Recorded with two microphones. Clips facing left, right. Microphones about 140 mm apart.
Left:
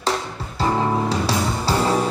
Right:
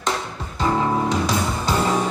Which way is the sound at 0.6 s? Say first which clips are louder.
Even; 30° left (ahead or behind).